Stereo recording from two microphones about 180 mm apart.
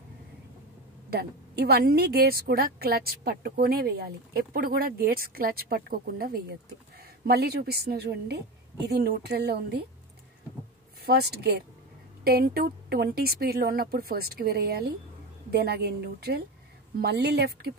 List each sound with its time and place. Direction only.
1.1 s a woman's voice: 60° right (ahead or behind)
11.0 s a woman's voice: 60° right (ahead or behind)